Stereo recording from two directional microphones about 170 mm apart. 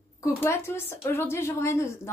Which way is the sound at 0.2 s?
15° left (ahead or behind).